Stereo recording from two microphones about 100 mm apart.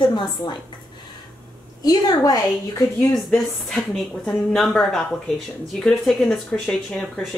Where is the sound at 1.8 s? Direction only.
40° left (ahead or behind).